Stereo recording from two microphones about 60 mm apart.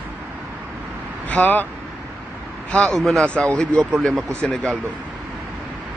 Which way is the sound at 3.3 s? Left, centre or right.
Centre.